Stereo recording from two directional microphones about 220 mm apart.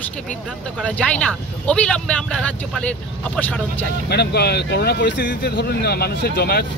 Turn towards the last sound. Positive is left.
turn(degrees=45)  # may be behind; listen again after turning